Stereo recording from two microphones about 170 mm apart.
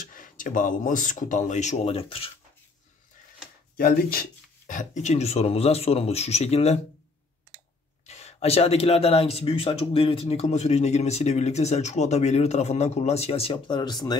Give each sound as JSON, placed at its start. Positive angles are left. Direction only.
{"t": 0.0, "sound": "speech", "side_deg": 50}
{"t": 3.7, "sound": "speech", "side_deg": 60}
{"t": 8.1, "sound": "speech", "side_deg": 40}